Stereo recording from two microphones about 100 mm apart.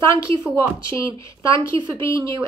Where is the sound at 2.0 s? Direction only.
30° left (ahead or behind).